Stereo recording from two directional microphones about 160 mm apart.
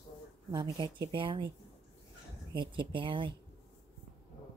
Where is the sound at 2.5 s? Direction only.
30° right (ahead or behind).